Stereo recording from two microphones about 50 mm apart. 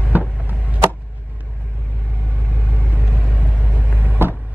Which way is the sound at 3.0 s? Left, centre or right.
Right.